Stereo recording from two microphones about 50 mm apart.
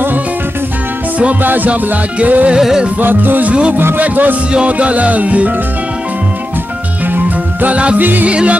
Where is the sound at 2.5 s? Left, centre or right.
Centre.